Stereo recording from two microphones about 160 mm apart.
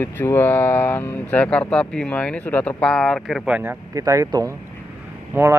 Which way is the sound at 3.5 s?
10° right (ahead or behind).